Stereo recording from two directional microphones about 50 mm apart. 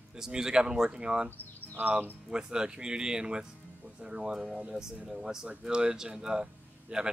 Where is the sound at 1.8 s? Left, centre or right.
Right.